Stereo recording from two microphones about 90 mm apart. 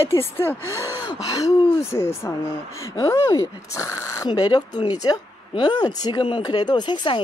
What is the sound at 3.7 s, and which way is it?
Speech, 35° left (ahead or behind).